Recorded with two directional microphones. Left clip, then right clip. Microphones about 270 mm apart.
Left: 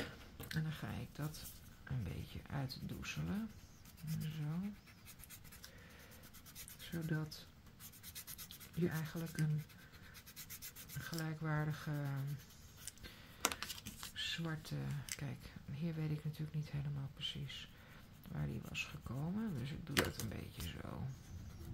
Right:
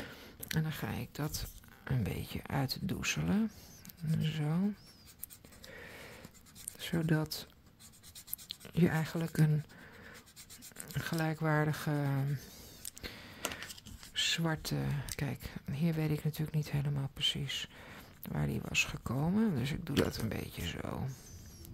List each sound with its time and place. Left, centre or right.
0.5 s speech: right
5.8 s a sound: right
6.8 s speech: right
8.5 s speech: right
11.0 s speech: right
13.0 s a sound: right
13.4 s computer keyboard: centre
14.1 s speech: right